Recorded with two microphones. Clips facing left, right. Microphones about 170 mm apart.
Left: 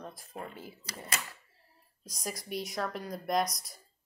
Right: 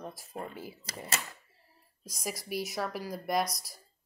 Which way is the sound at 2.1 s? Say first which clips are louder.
Right 2 dB; 5° right (ahead or behind).